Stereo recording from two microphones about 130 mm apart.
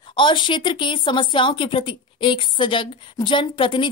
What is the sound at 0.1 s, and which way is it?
Speech, 40° left (ahead or behind).